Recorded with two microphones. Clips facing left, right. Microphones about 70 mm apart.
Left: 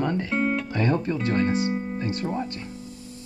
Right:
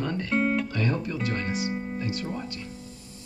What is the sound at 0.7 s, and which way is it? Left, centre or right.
Speech, left.